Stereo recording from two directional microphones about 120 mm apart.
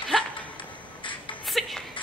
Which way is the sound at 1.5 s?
Centre (ahead or behind).